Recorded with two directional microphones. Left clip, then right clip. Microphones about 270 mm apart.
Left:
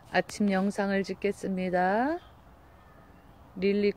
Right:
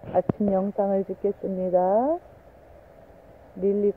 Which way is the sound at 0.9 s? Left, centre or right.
Centre.